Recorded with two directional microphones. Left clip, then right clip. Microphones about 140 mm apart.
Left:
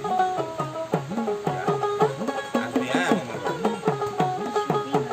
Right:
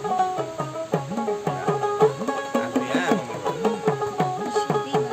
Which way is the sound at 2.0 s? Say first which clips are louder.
Right 3 dB; 20° right (ahead or behind).